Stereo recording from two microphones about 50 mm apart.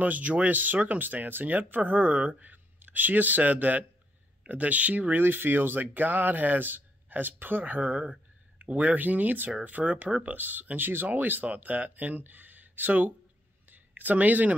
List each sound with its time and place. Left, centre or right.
0.0 s speech: right
5.2 s speech: right
13.7 s a sound: right